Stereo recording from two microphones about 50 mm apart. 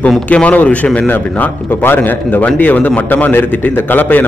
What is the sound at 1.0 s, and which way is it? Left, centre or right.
A man's voice, left.